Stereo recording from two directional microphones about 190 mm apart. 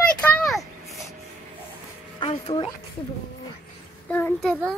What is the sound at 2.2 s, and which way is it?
Music, 30° left (ahead or behind).